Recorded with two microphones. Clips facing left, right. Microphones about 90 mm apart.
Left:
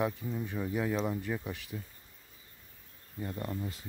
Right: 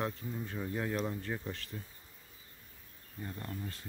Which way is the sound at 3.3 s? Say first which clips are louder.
Left 5 dB; 20° left (ahead or behind).